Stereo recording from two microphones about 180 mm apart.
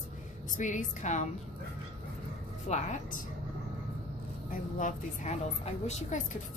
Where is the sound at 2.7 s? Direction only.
35° left (ahead or behind).